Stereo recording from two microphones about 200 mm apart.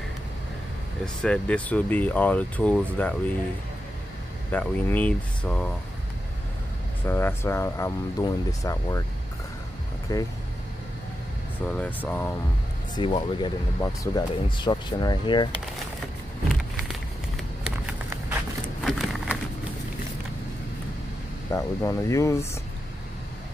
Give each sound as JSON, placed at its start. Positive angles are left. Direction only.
{"t": 1.0, "sound": "speech", "side_deg": 5}
{"t": 4.5, "sound": "speech", "side_deg": 10}
{"t": 7.1, "sound": "speech", "side_deg": 10}
{"t": 10.1, "sound": "speech", "side_deg": 15}
{"t": 11.6, "sound": "speech", "side_deg": 5}
{"t": 12.9, "sound": "speech", "side_deg": 25}
{"t": 18.9, "sound": "a sound", "side_deg": 0}
{"t": 21.5, "sound": "speech", "side_deg": 15}